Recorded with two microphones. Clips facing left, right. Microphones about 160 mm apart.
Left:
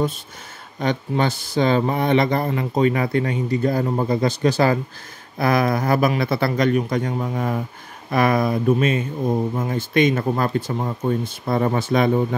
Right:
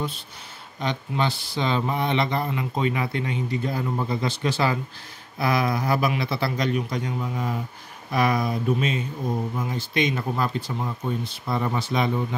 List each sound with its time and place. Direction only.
0.7 s speech: 50° left (ahead or behind)